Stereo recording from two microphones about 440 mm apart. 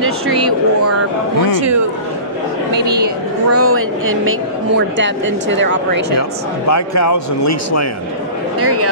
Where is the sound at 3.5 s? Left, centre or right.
Right.